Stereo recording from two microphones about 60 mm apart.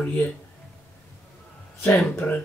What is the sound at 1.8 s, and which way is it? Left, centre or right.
Speech, left.